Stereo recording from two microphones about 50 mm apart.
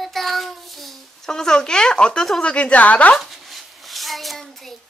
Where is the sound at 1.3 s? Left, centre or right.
Centre; by 3.1 s left.